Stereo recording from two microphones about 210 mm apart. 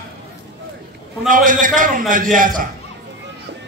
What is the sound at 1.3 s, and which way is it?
A man's voice, 40° right (ahead or behind).